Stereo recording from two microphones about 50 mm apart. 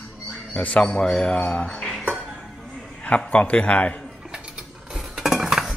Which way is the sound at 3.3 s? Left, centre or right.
Left.